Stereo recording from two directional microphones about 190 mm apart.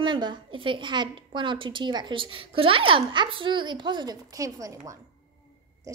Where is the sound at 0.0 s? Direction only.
25° right (ahead or behind).